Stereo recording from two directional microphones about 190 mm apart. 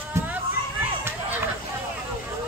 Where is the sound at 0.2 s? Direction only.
15° right (ahead or behind).